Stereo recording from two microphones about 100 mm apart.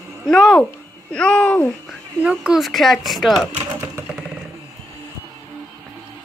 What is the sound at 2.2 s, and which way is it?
Speech, 10° right (ahead or behind).